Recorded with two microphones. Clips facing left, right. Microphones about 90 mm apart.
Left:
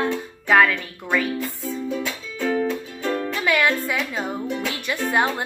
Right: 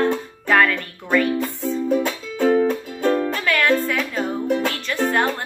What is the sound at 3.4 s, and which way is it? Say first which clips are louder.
Music: right 2 dB; 10° left (ahead or behind).